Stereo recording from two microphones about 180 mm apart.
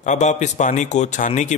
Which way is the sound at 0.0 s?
40° left (ahead or behind).